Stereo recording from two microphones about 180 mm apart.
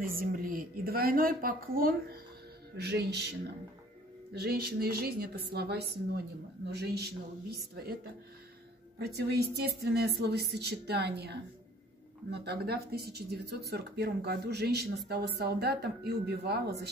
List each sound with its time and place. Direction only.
0.2 s a woman's voice: 50° right (ahead or behind)
4.3 s speech: 60° right (ahead or behind)